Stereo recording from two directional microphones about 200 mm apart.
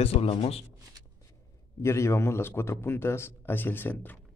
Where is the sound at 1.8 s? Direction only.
15° left (ahead or behind).